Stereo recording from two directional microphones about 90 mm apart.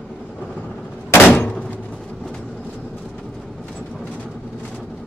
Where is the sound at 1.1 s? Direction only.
20° left (ahead or behind).